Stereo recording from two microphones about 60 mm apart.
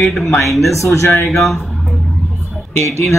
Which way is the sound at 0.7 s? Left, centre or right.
Left.